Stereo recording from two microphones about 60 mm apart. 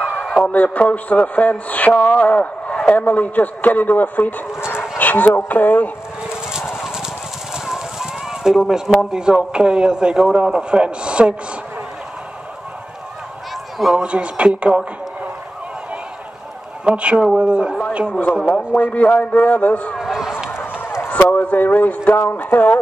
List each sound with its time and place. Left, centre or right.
0.0 s a sound: left
0.5 s a man's voice: left
4.9 s dog: left
5.5 s a man's voice: left
6.2 s a sound: centre
7.5 s speech: centre
13.7 s speech: centre
14.0 s speech: right
16.8 s speech: centre
18.4 s a man's voice: left
20.0 s run: centre
21.1 s a sound: left
21.4 s a man's voice: left